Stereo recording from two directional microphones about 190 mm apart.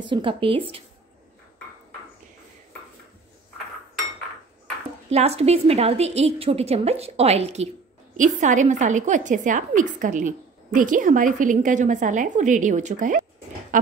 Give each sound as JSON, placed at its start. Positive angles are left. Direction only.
{"t": 0.0, "sound": "speech", "side_deg": -25}
{"t": 5.1, "sound": "a woman's voice", "side_deg": -35}